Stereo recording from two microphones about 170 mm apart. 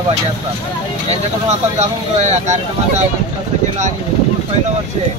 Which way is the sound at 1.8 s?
40° right (ahead or behind).